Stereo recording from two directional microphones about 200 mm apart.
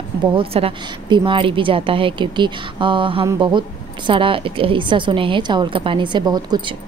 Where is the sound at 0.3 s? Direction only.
30° right (ahead or behind).